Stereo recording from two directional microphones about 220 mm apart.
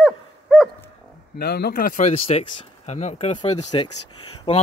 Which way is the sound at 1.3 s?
45° left (ahead or behind).